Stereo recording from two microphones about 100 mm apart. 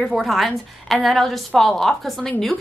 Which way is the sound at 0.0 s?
Centre (ahead or behind).